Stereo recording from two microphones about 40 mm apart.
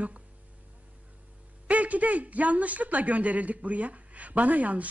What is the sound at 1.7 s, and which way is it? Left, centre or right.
A man's voice, right.